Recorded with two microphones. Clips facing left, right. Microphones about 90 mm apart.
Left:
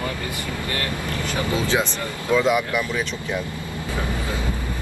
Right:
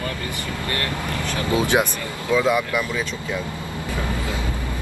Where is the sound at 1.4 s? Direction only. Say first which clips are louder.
Right 4 dB; 20° right (ahead or behind).